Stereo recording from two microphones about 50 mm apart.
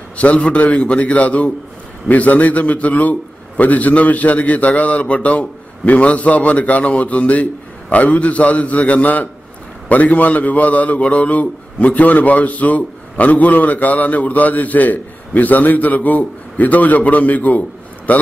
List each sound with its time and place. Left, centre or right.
0.2 s a man's voice: left